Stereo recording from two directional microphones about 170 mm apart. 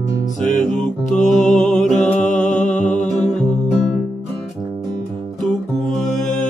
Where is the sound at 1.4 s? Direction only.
45° left (ahead or behind).